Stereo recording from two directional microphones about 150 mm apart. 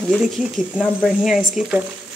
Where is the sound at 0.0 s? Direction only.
Centre (ahead or behind).